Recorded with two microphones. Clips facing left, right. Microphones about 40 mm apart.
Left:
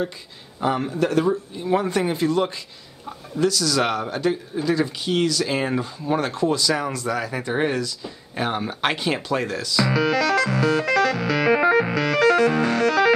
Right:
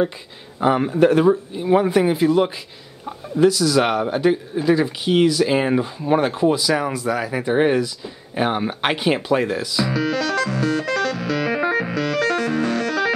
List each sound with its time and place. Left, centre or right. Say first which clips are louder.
0.6 s speech: right 6 dB; centre
9.8 s music: left 4 dB; centre